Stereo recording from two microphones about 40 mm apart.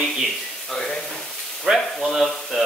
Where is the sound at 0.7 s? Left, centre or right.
Centre.